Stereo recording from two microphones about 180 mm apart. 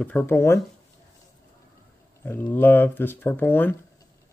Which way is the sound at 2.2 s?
10° left (ahead or behind).